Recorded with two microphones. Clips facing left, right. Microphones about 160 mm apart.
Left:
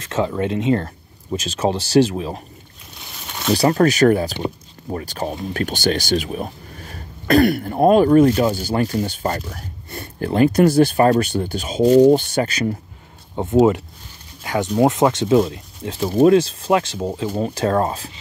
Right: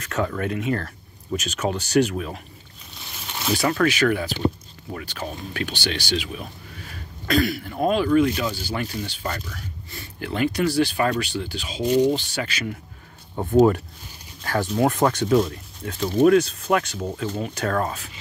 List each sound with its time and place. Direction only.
0.0 s speech: 25° left (ahead or behind)
3.5 s speech: 35° left (ahead or behind)
7.2 s speech: 55° left (ahead or behind); by 12.7 s 40° left (ahead or behind)
13.4 s speech: 20° left (ahead or behind)